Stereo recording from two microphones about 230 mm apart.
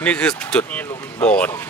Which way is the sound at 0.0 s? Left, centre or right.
Centre.